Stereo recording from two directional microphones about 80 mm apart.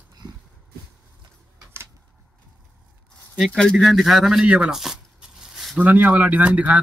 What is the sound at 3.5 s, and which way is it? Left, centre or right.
Speech, centre.